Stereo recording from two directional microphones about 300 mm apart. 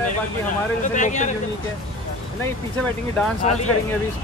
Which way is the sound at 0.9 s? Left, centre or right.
Left.